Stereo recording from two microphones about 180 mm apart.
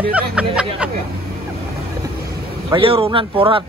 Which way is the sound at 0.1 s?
5° right (ahead or behind).